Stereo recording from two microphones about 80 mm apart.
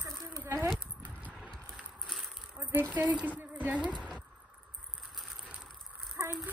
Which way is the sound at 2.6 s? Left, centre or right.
Right.